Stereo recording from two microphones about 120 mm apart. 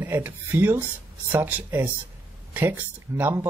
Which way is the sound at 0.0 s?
20° right (ahead or behind).